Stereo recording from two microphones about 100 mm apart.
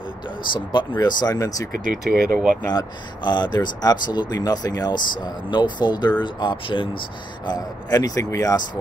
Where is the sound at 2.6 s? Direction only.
45° left (ahead or behind).